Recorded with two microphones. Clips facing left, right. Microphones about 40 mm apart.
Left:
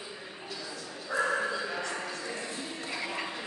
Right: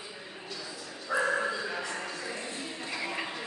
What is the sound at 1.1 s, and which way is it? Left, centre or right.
Dog, right.